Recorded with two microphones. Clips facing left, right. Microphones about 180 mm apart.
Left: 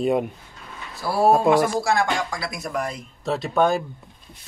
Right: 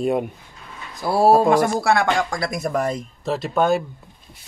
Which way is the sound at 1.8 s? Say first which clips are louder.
Right 3 dB; 55° right (ahead or behind).